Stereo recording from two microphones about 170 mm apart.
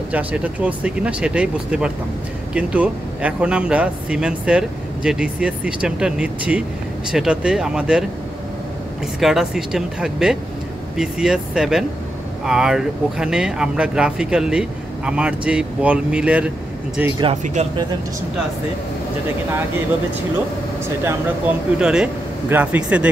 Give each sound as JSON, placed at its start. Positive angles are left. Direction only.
{"t": 0.1, "sound": "a man's voice", "side_deg": -10}
{"t": 9.2, "sound": "speech", "side_deg": -5}
{"t": 17.6, "sound": "speech", "side_deg": -40}
{"t": 21.7, "sound": "a man's voice", "side_deg": -5}